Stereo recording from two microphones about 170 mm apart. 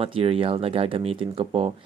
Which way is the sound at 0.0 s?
35° right (ahead or behind).